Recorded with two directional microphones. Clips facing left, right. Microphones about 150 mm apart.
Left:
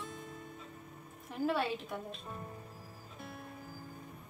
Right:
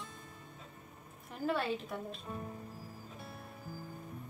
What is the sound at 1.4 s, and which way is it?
Speech, centre (ahead or behind).